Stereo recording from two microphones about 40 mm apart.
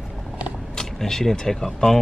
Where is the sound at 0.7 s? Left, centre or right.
Centre.